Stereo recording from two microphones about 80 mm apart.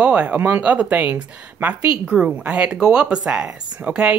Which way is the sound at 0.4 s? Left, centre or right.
Centre.